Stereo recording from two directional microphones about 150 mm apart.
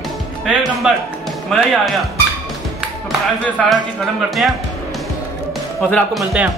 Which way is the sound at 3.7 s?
Centre (ahead or behind).